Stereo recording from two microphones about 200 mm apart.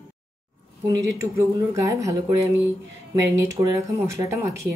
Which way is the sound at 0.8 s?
20° right (ahead or behind).